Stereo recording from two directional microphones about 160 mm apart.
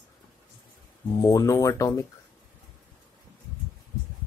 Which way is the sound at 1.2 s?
20° left (ahead or behind).